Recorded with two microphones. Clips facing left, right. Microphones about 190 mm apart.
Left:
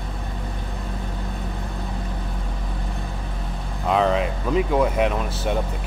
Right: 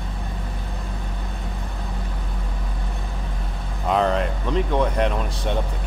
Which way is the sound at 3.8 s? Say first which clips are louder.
Left 1 dB; centre (ahead or behind).